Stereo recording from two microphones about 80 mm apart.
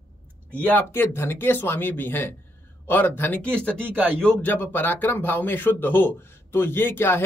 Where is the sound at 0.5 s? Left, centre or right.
Left.